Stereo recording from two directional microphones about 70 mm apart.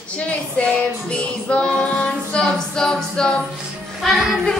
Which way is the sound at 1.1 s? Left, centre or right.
Centre.